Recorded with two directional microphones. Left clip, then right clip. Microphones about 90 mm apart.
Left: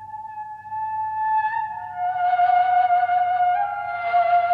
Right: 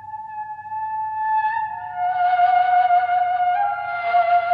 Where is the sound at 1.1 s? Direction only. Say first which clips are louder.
Right 1 dB; 35° right (ahead or behind).